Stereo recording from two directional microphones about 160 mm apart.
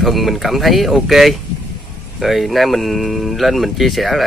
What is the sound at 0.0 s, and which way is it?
Speech, centre (ahead or behind).